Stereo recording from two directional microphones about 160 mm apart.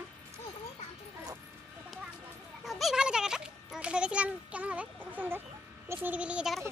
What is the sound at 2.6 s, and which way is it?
A child's voice, centre (ahead or behind).